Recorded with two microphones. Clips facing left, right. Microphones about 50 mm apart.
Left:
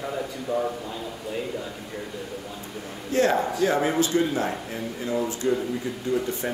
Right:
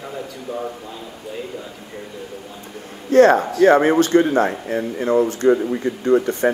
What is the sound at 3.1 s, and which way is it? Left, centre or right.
Speech, right.